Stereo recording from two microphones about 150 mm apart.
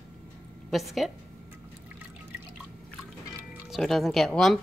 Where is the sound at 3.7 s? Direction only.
Centre (ahead or behind).